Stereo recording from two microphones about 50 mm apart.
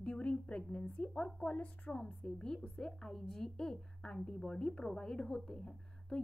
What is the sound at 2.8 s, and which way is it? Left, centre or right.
A woman's voice, centre.